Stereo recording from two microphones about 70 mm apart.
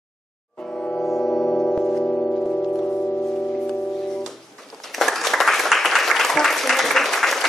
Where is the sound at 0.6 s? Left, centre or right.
Centre.